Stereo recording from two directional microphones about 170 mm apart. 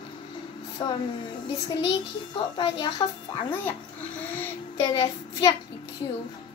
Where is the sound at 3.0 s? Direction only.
25° left (ahead or behind).